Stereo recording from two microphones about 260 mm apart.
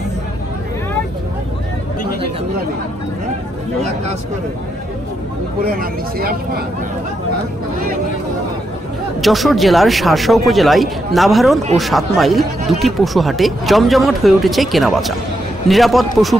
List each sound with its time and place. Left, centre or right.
5.6 s speech: right
9.2 s speech: centre